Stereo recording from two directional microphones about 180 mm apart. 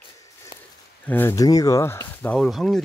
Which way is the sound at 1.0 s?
10° left (ahead or behind).